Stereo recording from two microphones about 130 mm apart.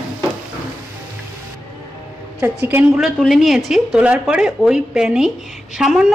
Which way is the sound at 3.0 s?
Centre (ahead or behind).